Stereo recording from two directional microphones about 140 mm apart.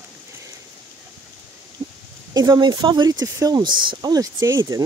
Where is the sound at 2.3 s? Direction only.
30° right (ahead or behind).